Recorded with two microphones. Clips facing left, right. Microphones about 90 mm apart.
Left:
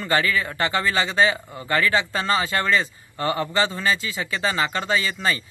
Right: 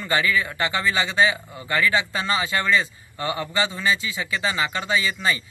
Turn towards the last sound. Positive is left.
turn(degrees=35)  # may be behind; listen again after turning